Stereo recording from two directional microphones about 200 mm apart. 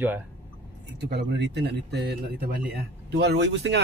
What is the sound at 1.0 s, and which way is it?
A man's voice, 55° right (ahead or behind).